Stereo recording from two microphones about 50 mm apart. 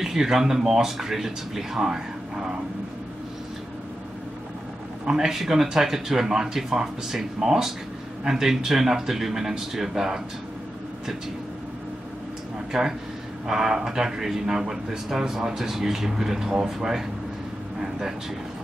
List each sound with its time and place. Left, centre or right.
0.0 s speech: centre
5.0 s speech: centre
12.7 s speech: centre
17.7 s a sound: centre